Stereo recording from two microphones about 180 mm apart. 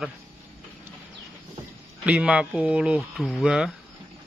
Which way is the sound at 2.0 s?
5° right (ahead or behind).